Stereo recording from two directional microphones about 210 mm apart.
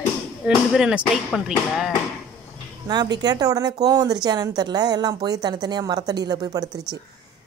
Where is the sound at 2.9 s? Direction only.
20° right (ahead or behind).